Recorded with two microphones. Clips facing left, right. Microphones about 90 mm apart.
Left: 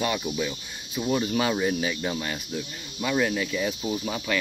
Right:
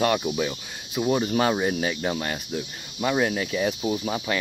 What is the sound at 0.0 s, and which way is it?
Speech, 60° right (ahead or behind).